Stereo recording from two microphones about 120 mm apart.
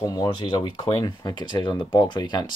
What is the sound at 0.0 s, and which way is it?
Speech, 35° left (ahead or behind).